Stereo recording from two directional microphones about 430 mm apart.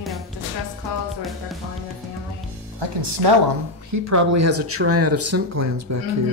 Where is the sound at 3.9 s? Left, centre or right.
Right.